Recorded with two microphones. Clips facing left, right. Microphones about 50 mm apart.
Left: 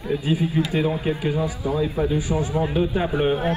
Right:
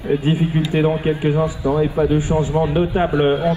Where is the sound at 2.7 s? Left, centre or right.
Right.